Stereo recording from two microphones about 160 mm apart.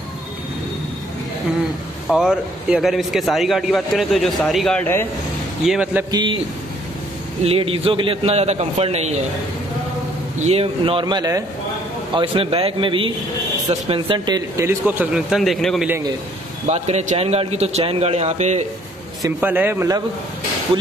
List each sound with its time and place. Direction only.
2.0 s speech: 5° right (ahead or behind)
5.7 s speech: 5° right (ahead or behind)
6.1 s a man's voice: 30° right (ahead or behind)
7.4 s a man's voice: 35° right (ahead or behind)
10.4 s a man's voice: 40° right (ahead or behind); by 15.9 s centre (ahead or behind)
16.6 s a man's voice: 40° right (ahead or behind)
19.2 s speech: 10° right (ahead or behind)